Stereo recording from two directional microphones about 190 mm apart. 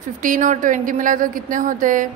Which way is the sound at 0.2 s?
45° right (ahead or behind).